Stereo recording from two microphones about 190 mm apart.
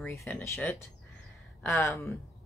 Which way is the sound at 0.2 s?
5° left (ahead or behind).